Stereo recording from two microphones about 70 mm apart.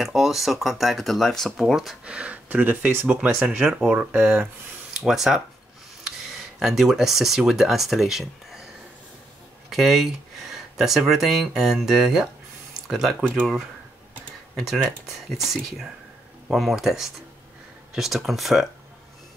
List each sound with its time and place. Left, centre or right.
0.0 s speech: centre
2.0 s speech: centre
3.1 s speech: centre
4.1 s speech: right
5.0 s speech: centre
9.7 s speech: centre
14.6 s speech: centre